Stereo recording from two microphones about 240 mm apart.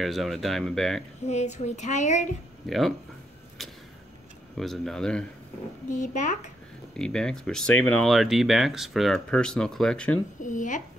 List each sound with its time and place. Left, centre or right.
0.0 s speech: centre
1.2 s speech: left
2.6 s speech: centre
4.6 s speech: centre
5.9 s speech: left
7.0 s speech: centre
10.4 s speech: left